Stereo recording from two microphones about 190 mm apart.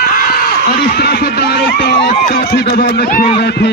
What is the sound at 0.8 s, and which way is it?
Speech, 55° left (ahead or behind).